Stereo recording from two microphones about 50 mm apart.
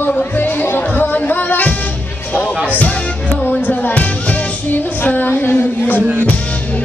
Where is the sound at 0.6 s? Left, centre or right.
Left.